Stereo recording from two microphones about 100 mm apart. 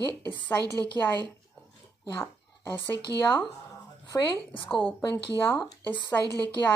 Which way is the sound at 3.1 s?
35° right (ahead or behind).